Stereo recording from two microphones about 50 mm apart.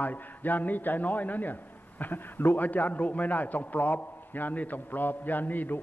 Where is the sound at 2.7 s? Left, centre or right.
Left.